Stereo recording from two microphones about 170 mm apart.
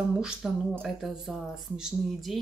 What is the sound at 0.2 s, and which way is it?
Speech, centre (ahead or behind).